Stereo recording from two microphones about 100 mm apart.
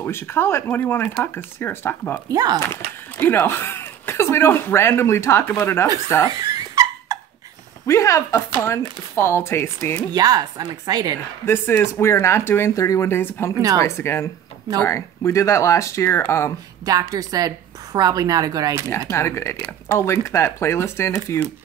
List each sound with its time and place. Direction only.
0.0 s speech: 25° left (ahead or behind)
2.2 s a woman's voice: 40° right (ahead or behind)
2.7 s speech: 20° left (ahead or behind)
6.2 s dog: 40° right (ahead or behind)
7.8 s speech: 30° left (ahead or behind)
10.1 s a woman's voice: 40° right (ahead or behind)
11.4 s speech: 25° left (ahead or behind)
16.8 s a woman's voice: 35° right (ahead or behind)
18.9 s speech: 30° left (ahead or behind)